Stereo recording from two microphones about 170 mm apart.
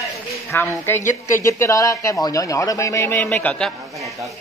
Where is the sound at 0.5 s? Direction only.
10° left (ahead or behind).